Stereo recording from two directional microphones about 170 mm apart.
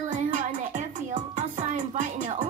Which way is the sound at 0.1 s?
50° right (ahead or behind).